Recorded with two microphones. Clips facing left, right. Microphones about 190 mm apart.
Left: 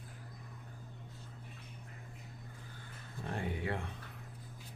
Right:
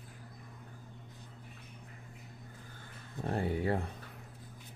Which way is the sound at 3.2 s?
40° right (ahead or behind).